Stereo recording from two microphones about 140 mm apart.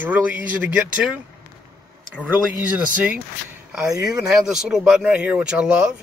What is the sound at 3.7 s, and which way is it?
Speech, 5° right (ahead or behind).